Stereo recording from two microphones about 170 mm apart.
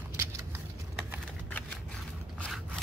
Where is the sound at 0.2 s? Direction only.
15° right (ahead or behind).